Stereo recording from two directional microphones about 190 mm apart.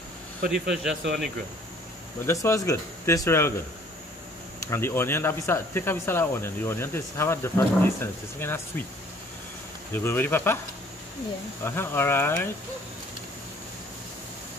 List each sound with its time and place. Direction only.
0.5 s speech: centre (ahead or behind)
2.2 s speech: 15° left (ahead or behind)
4.6 s speech: 10° left (ahead or behind)
9.9 s speech: 10° left (ahead or behind)
11.6 s speech: 10° left (ahead or behind)